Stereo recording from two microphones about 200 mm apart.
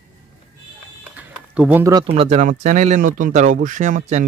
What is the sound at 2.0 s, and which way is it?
Speech, 30° right (ahead or behind).